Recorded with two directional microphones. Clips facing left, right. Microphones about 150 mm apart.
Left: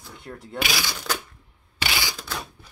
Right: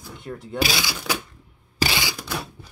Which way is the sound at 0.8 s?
10° right (ahead or behind).